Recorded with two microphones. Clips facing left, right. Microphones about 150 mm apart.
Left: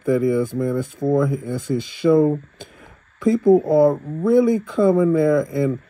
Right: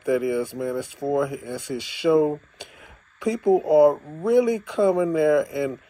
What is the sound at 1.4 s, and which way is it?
Speech, 45° left (ahead or behind).